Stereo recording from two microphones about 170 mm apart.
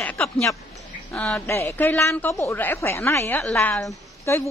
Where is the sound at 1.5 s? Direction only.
15° left (ahead or behind).